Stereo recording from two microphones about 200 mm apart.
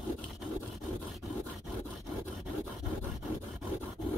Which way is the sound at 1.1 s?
Centre (ahead or behind).